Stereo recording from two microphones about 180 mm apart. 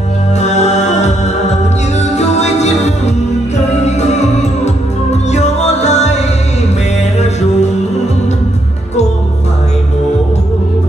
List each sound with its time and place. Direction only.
0.4 s music: 40° left (ahead or behind)